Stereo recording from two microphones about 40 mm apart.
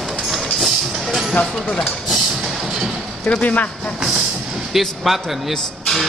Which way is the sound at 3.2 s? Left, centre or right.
Left.